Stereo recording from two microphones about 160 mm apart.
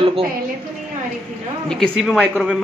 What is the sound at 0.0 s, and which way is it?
Speech, 35° right (ahead or behind).